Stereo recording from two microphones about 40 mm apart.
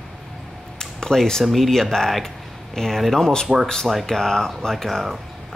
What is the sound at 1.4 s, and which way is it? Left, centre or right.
Speech, centre.